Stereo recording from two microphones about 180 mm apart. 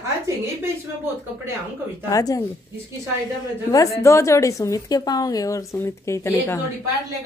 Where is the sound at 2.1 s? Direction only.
20° left (ahead or behind).